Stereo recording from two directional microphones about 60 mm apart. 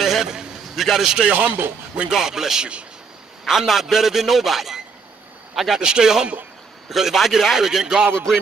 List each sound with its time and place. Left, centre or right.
0.0 s a man's voice: centre
1.3 s speech: right
2.0 s a man's voice: centre